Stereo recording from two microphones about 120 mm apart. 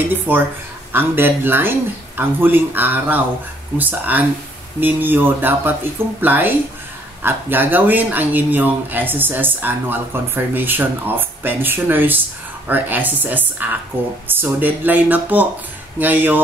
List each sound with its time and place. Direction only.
0.1 s speech: 15° right (ahead or behind)